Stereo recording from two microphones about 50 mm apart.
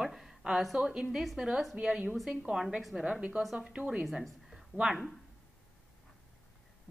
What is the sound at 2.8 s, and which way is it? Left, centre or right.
Speech, centre.